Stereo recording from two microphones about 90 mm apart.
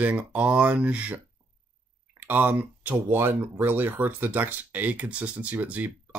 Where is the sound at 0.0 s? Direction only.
15° right (ahead or behind).